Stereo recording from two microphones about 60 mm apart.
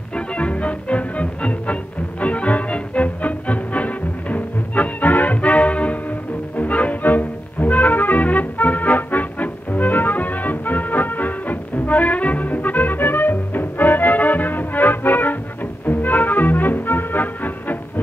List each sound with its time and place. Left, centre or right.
0.1 s music: centre